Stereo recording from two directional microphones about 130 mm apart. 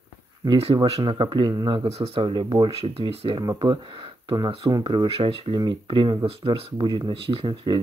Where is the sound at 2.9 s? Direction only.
50° right (ahead or behind).